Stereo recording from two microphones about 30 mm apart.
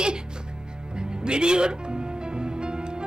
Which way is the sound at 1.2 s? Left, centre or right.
Right.